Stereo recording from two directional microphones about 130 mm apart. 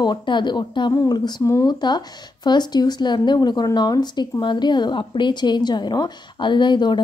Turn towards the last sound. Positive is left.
turn(degrees=35)  # may be behind; listen again after turning